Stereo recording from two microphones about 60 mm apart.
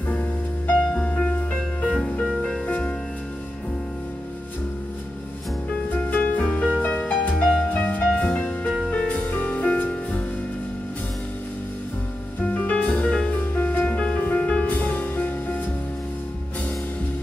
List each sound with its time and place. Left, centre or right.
0.9 s music: centre
5.9 s music: left
7.3 s music: centre
7.7 s music: left
12.4 s music: left
14.2 s music: left